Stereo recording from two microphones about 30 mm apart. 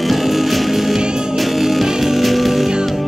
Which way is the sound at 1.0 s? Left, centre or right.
Right.